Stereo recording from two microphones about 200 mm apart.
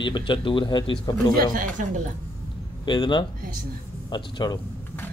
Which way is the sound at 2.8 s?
25° left (ahead or behind).